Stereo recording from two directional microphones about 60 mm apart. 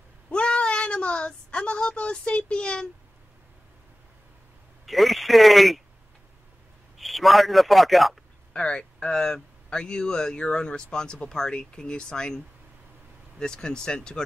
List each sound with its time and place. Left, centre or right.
0.3 s speech: centre
4.8 s speech: centre
7.0 s a man's voice: centre
8.5 s speech: centre
13.4 s speech: centre